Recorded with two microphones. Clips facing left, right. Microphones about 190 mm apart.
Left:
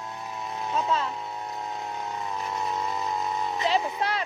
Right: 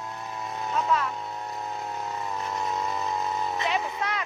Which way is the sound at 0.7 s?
25° left (ahead or behind).